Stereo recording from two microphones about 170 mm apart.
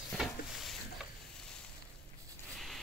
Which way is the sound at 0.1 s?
Centre (ahead or behind).